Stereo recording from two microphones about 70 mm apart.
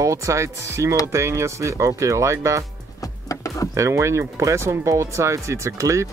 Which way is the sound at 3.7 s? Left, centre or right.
Right.